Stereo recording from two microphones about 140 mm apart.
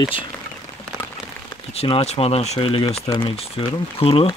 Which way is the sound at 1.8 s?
45° left (ahead or behind).